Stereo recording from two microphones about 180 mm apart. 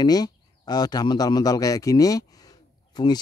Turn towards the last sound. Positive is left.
turn(degrees=20)  # may be behind; listen again after turning